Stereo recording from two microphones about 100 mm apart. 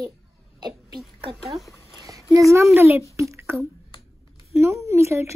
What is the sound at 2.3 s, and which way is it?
Speech, 30° right (ahead or behind).